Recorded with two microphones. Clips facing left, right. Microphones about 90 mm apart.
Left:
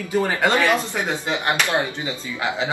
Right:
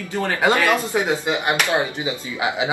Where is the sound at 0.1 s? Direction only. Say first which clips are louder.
Left 2 dB; 15° left (ahead or behind).